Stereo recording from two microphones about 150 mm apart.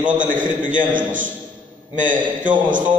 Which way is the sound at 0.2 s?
60° right (ahead or behind).